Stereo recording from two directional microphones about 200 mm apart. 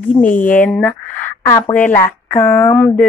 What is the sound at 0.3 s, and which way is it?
Speech, 40° left (ahead or behind).